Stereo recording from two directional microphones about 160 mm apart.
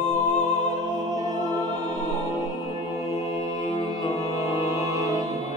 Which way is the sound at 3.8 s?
20° left (ahead or behind).